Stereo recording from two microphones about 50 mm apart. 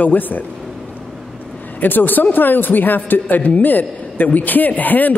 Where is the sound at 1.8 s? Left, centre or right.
Left.